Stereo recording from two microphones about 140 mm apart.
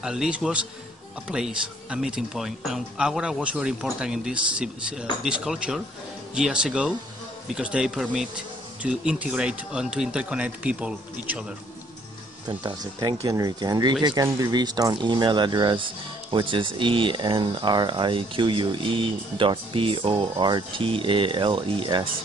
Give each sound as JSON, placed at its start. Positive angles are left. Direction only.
{"t": 0.0, "sound": "speech", "side_deg": -5}
{"t": 12.4, "sound": "speech", "side_deg": -30}